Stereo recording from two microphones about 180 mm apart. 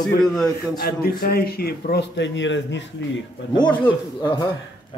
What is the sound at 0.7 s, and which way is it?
A man's voice, 55° left (ahead or behind).